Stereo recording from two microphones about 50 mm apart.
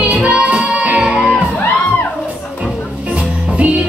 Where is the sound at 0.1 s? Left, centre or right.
Right.